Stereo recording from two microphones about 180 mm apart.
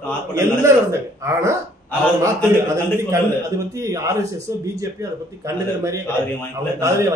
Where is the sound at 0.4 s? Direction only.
15° right (ahead or behind).